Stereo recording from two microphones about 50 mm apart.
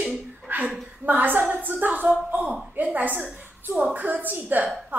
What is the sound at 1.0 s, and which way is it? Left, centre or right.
Speech, right.